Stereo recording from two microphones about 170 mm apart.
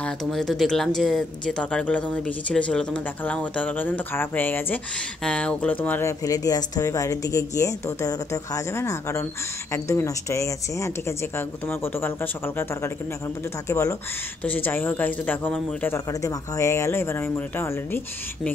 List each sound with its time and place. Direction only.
0.0 s speech: centre (ahead or behind)